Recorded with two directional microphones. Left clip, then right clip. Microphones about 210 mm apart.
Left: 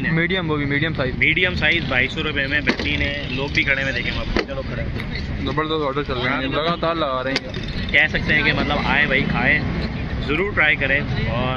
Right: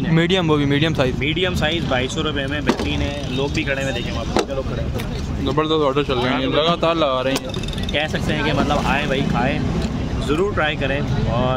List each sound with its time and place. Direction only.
0.1 s speech: 40° right (ahead or behind)
1.2 s speech: 20° right (ahead or behind)
3.5 s speech: 15° right (ahead or behind)
5.8 s speech: 10° right (ahead or behind)
7.9 s speech: 15° right (ahead or behind)